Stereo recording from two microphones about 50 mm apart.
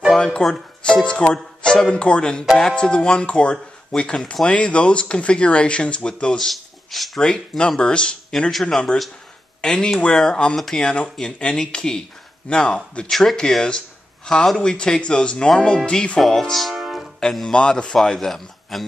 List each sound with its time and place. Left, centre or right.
0.2 s speech: centre
6.3 s speech: centre
7.2 s speech: centre
13.1 s speech: centre
13.4 s speech: centre
18.1 s a man's voice: centre